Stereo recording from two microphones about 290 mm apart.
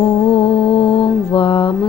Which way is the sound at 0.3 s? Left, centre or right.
Centre.